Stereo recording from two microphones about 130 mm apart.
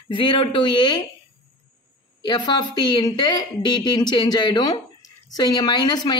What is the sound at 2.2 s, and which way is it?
A woman's voice, 35° left (ahead or behind).